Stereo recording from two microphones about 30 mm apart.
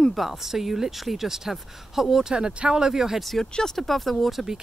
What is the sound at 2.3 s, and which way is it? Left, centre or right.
Speech, right.